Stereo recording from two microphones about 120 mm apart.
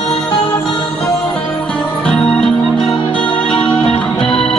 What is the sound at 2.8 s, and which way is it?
Music, 45° left (ahead or behind).